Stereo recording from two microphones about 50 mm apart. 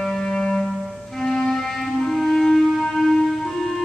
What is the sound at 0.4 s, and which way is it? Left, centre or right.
Music, centre.